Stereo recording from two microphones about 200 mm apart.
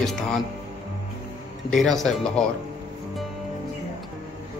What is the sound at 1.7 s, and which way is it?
Speech, centre (ahead or behind).